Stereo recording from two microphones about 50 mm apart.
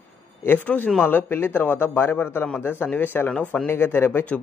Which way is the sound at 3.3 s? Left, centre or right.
Left.